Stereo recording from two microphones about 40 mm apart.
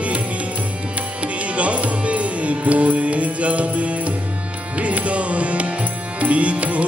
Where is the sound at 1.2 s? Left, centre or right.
Right.